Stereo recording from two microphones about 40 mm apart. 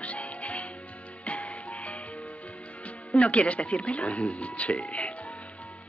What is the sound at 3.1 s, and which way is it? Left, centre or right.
Speech, left.